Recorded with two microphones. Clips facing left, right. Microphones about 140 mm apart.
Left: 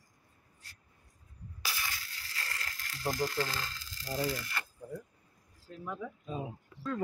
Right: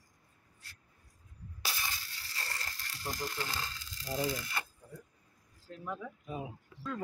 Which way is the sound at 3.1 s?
55° left (ahead or behind).